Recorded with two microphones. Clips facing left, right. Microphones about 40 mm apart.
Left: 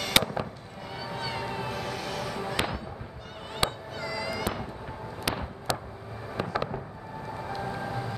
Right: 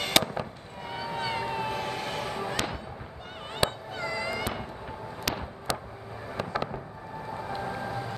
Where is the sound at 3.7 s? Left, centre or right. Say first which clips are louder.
Right 1 dB; right.